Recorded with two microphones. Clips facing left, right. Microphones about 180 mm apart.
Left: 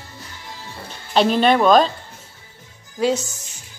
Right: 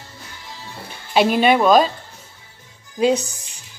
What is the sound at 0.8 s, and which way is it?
Speech, 10° right (ahead or behind).